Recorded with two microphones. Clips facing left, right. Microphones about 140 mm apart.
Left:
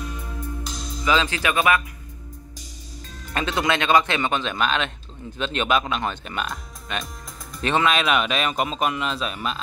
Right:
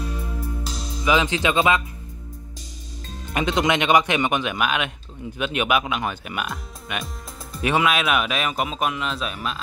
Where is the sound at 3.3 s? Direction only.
15° right (ahead or behind).